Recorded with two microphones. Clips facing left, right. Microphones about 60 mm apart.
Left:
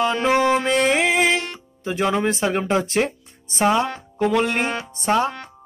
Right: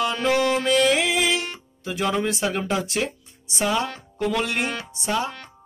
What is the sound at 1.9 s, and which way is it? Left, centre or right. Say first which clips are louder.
Speech: left 3 dB; left.